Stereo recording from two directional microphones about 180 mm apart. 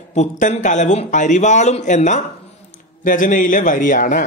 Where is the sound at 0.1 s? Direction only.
40° left (ahead or behind).